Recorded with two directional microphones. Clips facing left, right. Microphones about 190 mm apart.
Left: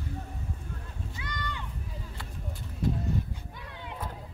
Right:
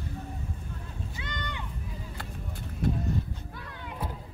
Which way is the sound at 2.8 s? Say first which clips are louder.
Right 1 dB; 60° right (ahead or behind).